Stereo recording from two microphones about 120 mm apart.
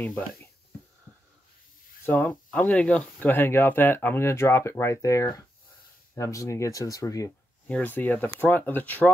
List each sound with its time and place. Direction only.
0.0 s speech: 15° left (ahead or behind)
2.0 s speech: 15° left (ahead or behind); by 7.3 s 30° left (ahead or behind)
7.6 s speech: 15° left (ahead or behind)